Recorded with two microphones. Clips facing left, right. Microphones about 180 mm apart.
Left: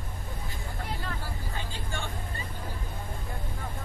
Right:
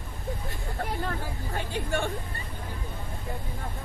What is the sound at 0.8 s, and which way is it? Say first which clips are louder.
Speech: right 6 dB; 55° right (ahead or behind).